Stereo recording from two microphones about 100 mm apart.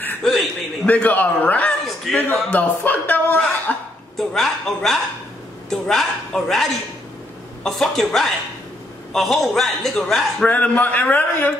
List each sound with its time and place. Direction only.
0.2 s a sound: centre (ahead or behind)
0.8 s a man's voice: 15° left (ahead or behind)
4.2 s a man's voice: 5° left (ahead or behind)
10.5 s a man's voice: 15° left (ahead or behind)